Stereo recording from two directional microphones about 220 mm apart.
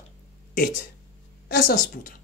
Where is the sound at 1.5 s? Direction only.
45° left (ahead or behind).